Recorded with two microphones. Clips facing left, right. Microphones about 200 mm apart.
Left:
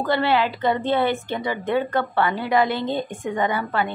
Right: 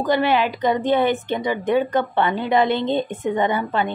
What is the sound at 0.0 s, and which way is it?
A woman's voice, 15° right (ahead or behind).